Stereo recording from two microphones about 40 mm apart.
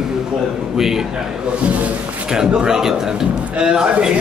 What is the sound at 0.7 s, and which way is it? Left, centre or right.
Speech, centre.